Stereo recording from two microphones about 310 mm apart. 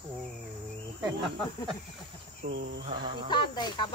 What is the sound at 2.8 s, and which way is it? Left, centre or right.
Speech, centre.